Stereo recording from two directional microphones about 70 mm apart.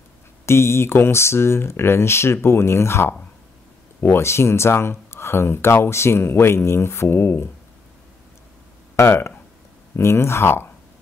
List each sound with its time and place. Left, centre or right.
0.5 s speech: left
8.9 s speech: left